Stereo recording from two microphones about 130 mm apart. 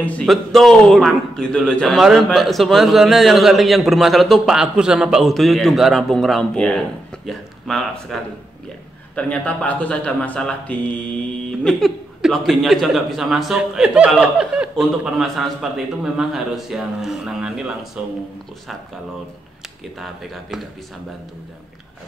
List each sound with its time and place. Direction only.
0.0 s a man's voice: 10° left (ahead or behind)
0.3 s a man's voice: centre (ahead or behind)